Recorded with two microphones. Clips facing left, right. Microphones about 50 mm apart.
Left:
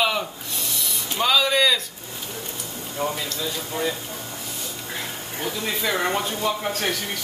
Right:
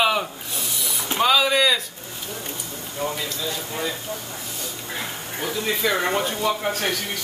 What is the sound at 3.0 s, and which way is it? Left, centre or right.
Speech, left.